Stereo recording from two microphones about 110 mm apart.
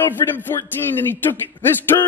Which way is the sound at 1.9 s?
35° left (ahead or behind).